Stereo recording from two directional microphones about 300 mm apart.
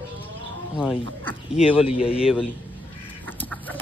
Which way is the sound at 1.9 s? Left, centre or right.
Centre.